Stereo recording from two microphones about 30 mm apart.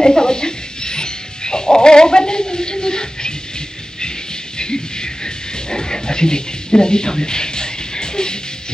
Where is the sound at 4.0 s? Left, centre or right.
Left.